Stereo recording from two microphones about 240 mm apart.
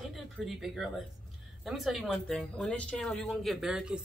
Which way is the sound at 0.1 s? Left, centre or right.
Centre.